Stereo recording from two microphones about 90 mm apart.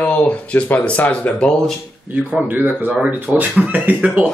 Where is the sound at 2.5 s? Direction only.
20° right (ahead or behind).